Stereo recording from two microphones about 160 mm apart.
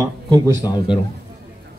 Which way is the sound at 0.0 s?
20° right (ahead or behind).